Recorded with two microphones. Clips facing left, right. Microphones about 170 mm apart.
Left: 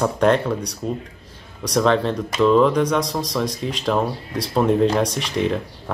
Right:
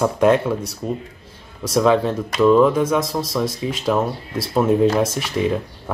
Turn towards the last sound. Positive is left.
turn(degrees=-5)  # may be behind; listen again after turning